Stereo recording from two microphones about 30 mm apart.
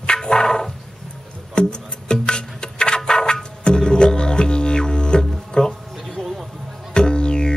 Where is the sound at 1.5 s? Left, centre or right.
Left.